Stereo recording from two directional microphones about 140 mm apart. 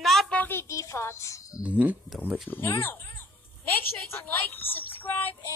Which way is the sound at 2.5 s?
15° left (ahead or behind).